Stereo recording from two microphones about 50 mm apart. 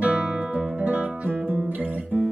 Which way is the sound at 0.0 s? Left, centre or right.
Right.